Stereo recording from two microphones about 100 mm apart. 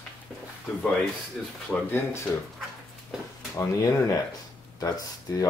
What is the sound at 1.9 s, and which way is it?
Speech, 25° left (ahead or behind).